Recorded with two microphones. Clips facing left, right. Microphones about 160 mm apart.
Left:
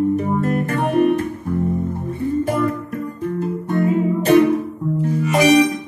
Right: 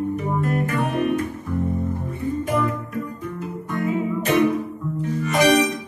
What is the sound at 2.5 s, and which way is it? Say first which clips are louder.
Music: left 3 dB; 35° left (ahead or behind).